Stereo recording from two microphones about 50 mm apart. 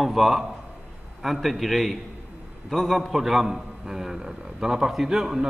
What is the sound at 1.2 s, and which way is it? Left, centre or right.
A man's voice, centre.